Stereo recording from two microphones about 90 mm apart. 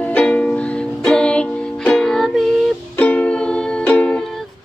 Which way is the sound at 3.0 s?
15° left (ahead or behind).